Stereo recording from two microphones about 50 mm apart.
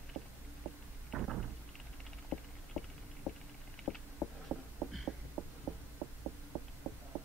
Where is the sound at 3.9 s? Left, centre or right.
Centre.